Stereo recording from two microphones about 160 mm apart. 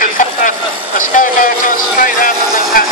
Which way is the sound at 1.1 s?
55° left (ahead or behind).